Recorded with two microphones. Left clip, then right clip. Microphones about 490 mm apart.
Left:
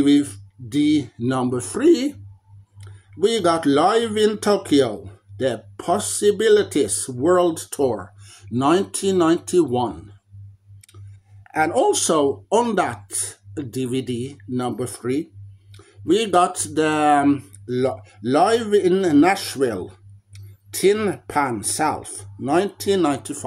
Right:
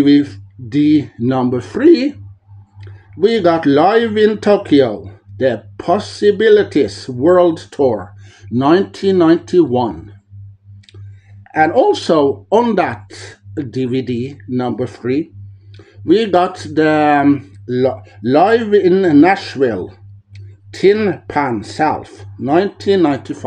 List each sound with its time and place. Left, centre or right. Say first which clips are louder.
0.0 s speech: right 6 dB; left
3.3 s speech: right 6 dB; left
11.4 s speech: right 7 dB; left